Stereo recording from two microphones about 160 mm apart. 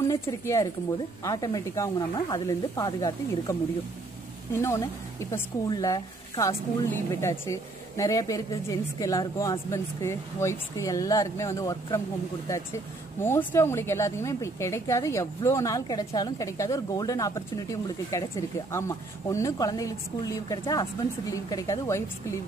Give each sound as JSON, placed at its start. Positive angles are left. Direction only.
{"t": 0.1, "sound": "a woman's voice", "side_deg": 20}